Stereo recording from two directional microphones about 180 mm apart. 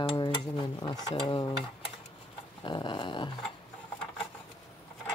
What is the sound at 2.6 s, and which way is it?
Speech, 25° left (ahead or behind).